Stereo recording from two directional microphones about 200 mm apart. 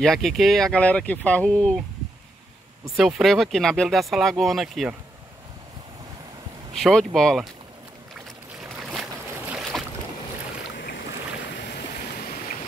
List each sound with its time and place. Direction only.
0.0 s speech: centre (ahead or behind)
3.0 s speech: centre (ahead or behind)
6.7 s speech: centre (ahead or behind)
8.6 s boat: centre (ahead or behind)
11.3 s boat: 55° left (ahead or behind)